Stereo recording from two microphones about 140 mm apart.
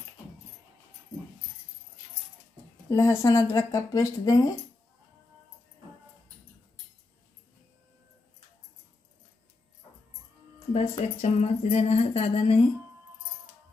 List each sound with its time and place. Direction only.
2.9 s speech: 20° left (ahead or behind)
10.7 s speech: 55° left (ahead or behind)